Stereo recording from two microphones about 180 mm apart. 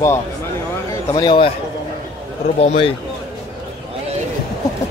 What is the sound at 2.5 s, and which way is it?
Speech, 35° left (ahead or behind).